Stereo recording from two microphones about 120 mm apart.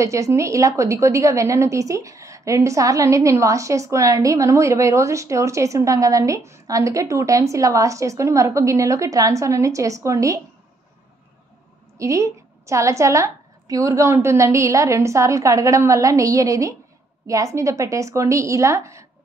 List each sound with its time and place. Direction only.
0.0 s a woman's voice: 25° right (ahead or behind)
12.0 s a woman's voice: 25° right (ahead or behind)